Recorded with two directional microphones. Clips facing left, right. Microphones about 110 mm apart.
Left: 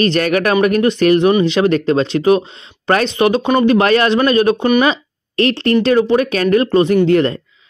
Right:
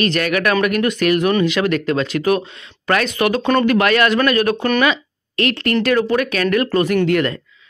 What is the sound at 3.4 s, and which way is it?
Speech, 10° left (ahead or behind).